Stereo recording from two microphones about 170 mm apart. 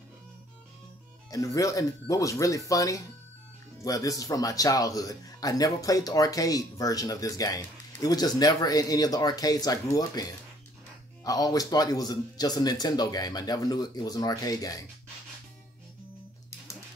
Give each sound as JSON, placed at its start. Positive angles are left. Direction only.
{"t": 1.3, "sound": "speech", "side_deg": 20}
{"t": 11.2, "sound": "speech", "side_deg": 20}